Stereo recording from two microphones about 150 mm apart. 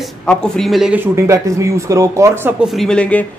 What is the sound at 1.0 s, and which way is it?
Speech, 20° right (ahead or behind).